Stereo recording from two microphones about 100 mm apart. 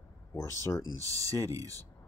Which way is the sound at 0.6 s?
35° left (ahead or behind).